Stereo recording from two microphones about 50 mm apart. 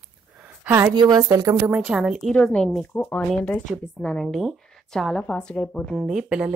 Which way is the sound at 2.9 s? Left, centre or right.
Left.